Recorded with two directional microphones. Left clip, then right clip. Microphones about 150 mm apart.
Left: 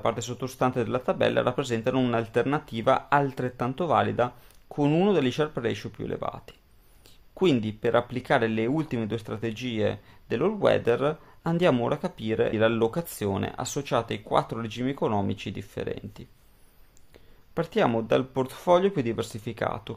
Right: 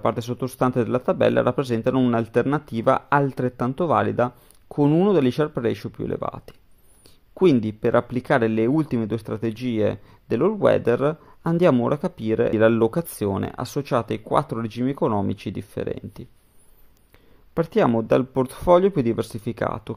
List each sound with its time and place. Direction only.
0.0 s speech: 35° right (ahead or behind)
7.6 s speech: 35° right (ahead or behind)
17.6 s speech: 35° right (ahead or behind)